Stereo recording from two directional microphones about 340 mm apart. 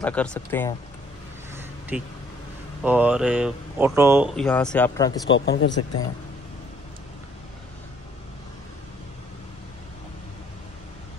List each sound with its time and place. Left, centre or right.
0.0 s speech: centre
1.5 s a sound: centre
2.8 s speech: centre
5.3 s speech: left